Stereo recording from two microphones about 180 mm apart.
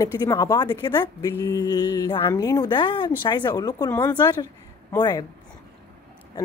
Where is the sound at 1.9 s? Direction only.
25° left (ahead or behind).